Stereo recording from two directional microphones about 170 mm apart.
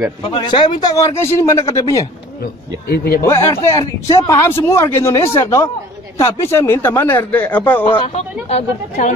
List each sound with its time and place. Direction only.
0.2 s a man's voice: 30° left (ahead or behind)
2.9 s a man's voice: 65° left (ahead or behind)
3.3 s a man's voice: 15° left (ahead or behind)
7.8 s speech: 35° left (ahead or behind)